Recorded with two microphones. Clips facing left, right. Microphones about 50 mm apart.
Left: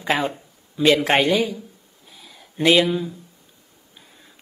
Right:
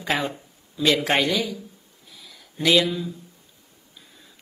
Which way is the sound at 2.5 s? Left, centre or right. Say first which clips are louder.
Left 3 dB; left.